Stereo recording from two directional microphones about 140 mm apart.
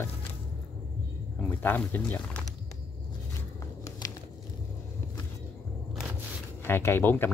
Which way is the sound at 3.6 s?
25° left (ahead or behind).